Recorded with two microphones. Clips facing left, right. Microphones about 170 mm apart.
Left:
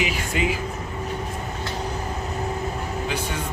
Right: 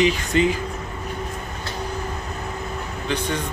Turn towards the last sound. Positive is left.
turn(degrees=5)  # may be behind; listen again after turning